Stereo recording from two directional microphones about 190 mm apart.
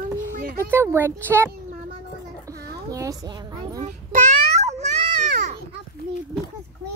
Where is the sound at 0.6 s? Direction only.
10° right (ahead or behind).